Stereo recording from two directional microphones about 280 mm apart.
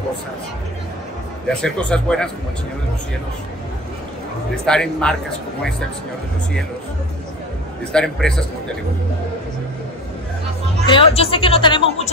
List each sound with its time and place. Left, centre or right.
1.5 s speech: centre
4.6 s speech: centre
7.9 s speech: centre
10.9 s speech: centre